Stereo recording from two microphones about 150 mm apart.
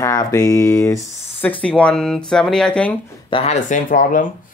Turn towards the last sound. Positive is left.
turn(degrees=60)  # may be behind; listen again after turning